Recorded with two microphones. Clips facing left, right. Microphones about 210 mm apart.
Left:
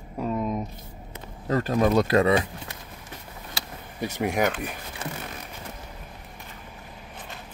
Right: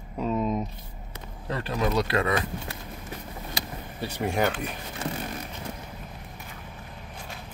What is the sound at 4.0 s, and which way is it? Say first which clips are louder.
Speech: left 2 dB; 15° left (ahead or behind).